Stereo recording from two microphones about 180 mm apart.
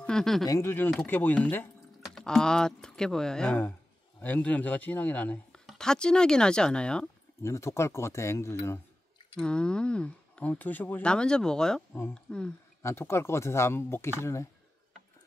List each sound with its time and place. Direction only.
0.0 s a sound: 5° left (ahead or behind)
0.5 s speech: 15° left (ahead or behind)
9.4 s speech: 5° left (ahead or behind)